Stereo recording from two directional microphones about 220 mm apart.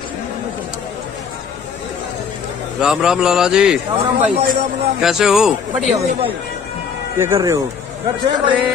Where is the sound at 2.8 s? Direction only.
5° right (ahead or behind).